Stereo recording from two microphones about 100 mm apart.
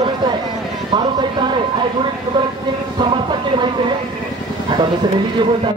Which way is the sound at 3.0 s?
50° right (ahead or behind).